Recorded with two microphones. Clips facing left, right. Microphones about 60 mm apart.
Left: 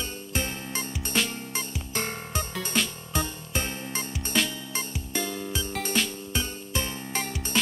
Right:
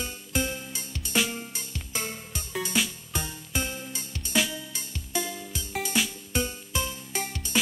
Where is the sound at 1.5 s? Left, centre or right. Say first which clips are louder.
Left 4 dB; left.